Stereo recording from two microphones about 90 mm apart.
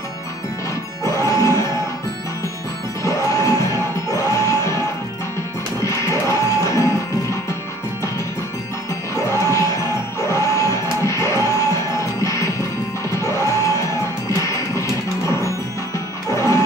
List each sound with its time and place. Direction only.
1.0 s music: 35° left (ahead or behind)
3.0 s music: 35° left (ahead or behind)
5.9 s music: 35° left (ahead or behind)
9.1 s music: 35° left (ahead or behind)
16.3 s music: 35° left (ahead or behind)